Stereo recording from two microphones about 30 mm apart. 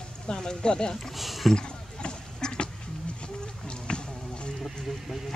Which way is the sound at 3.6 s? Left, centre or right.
Left.